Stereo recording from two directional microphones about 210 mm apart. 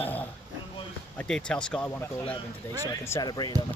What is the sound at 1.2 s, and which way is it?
Speech, 5° left (ahead or behind).